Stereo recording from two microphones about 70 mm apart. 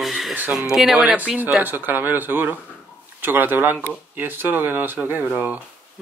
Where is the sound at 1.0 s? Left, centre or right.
Centre.